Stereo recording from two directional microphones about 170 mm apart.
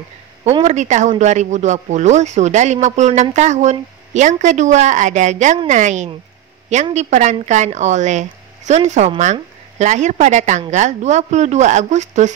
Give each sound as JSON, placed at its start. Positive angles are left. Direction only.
{"t": 0.4, "sound": "a woman's voice", "side_deg": -35}